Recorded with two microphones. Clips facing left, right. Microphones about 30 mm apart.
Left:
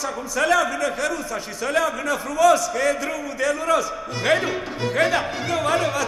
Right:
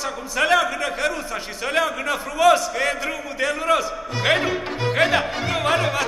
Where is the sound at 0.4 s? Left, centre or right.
Right.